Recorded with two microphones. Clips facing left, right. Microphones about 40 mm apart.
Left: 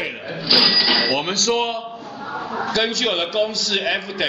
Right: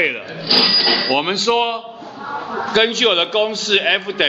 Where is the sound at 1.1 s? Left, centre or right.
Right.